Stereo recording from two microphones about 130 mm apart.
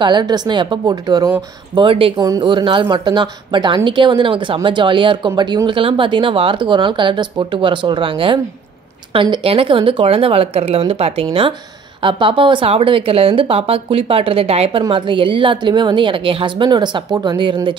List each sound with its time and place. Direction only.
0.0 s speech: 35° right (ahead or behind)
1.8 s speech: 45° right (ahead or behind)
2.1 s speech: 30° right (ahead or behind)
2.4 s speech: 40° right (ahead or behind)